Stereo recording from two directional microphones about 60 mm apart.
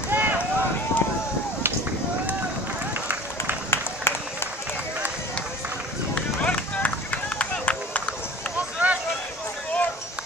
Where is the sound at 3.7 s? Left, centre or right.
Left.